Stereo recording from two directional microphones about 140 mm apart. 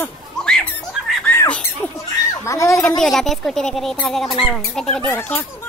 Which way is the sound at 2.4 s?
20° left (ahead or behind).